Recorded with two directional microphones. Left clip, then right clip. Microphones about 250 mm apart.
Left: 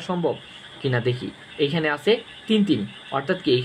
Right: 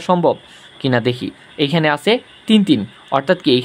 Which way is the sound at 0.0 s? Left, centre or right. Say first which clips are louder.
Right 10 dB; right.